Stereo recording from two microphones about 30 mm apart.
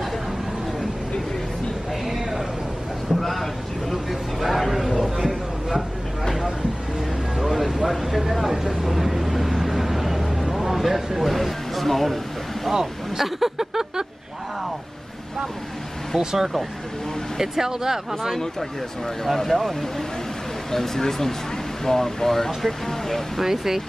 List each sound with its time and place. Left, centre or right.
2.0 s a sound: centre
3.1 s speech: centre
5.1 s a sound: centre
7.3 s music: centre
7.8 s vehicle: centre
12.7 s speech: centre
16.2 s speech: centre
19.3 s speech: centre
23.4 s speech: centre